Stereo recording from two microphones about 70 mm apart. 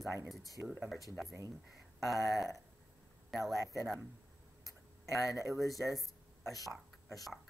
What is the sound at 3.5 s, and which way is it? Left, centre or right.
Speech, right.